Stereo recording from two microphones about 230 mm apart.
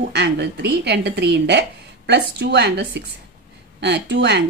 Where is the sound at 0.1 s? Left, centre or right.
Right.